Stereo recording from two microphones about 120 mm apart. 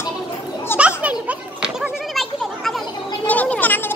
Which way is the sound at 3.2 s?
15° left (ahead or behind).